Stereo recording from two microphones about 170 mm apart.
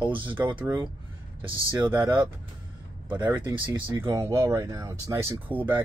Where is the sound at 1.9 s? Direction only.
10° right (ahead or behind).